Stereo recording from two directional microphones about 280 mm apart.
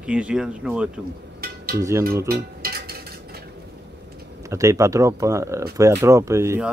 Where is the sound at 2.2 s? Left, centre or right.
Right.